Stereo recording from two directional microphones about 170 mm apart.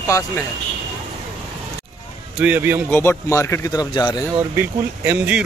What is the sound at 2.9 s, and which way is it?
Speech, 15° left (ahead or behind).